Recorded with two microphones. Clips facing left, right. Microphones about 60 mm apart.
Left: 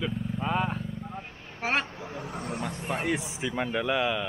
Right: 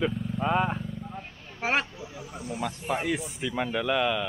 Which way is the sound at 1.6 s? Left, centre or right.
Centre.